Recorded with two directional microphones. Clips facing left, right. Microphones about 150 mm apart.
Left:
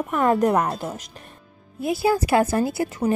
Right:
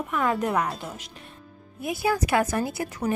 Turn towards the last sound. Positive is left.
turn(degrees=30)  # may be behind; listen again after turning